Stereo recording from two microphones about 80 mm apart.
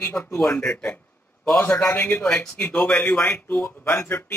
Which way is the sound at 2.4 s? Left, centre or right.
Left.